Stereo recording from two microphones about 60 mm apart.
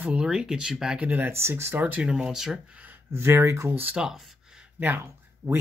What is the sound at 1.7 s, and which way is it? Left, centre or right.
Speech, right.